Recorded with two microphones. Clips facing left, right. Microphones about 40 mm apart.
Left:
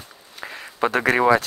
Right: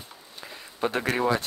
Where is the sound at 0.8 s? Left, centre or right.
Left.